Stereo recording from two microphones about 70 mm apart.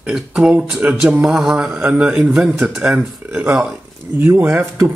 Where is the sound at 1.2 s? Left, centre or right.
Centre.